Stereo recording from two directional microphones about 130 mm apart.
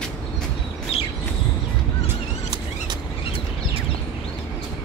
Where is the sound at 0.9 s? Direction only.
50° left (ahead or behind).